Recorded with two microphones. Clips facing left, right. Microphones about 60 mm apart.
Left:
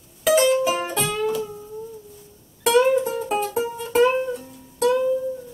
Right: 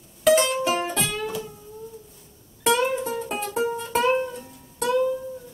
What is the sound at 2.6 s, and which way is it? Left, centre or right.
Music, centre.